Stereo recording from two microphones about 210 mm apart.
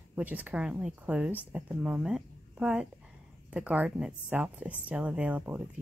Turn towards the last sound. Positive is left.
turn(degrees=-10)  # may be behind; listen again after turning